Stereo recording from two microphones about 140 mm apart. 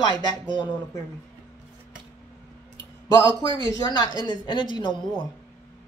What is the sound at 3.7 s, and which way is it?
Speech, 30° left (ahead or behind).